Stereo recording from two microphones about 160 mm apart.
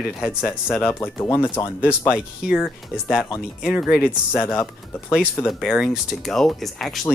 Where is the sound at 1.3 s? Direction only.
20° left (ahead or behind).